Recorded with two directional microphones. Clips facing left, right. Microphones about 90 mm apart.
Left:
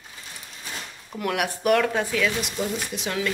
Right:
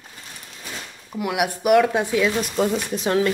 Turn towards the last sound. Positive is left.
turn(degrees=-35)  # may be behind; listen again after turning